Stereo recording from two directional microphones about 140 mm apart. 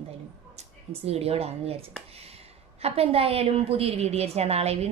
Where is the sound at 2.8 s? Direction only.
45° right (ahead or behind).